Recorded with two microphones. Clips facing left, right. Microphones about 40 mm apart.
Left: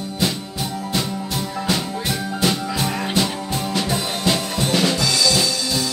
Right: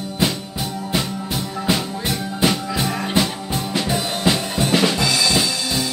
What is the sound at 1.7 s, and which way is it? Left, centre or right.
Music, centre.